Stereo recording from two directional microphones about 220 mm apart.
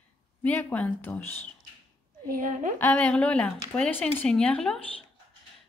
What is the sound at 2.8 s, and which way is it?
A woman's voice, 5° left (ahead or behind).